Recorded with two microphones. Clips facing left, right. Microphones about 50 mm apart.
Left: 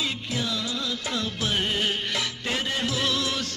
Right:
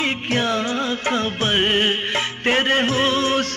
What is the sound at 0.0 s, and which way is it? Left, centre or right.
Music, right.